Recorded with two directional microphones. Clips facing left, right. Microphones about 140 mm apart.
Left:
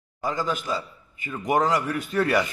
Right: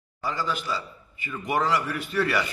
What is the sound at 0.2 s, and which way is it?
A man's voice, 45° left (ahead or behind).